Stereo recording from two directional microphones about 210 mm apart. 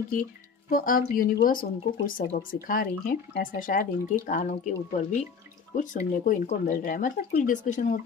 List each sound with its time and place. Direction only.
0.1 s speech: 40° left (ahead or behind)